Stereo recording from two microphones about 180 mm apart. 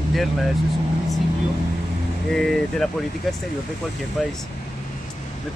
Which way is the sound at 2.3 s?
Centre (ahead or behind).